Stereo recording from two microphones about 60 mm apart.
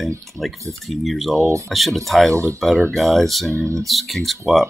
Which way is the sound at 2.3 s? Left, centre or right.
Right.